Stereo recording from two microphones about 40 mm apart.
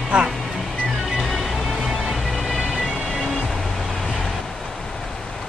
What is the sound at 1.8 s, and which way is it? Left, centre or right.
Music, centre.